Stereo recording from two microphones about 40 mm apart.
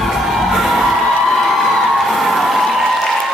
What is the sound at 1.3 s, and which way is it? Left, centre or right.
Crowd, centre.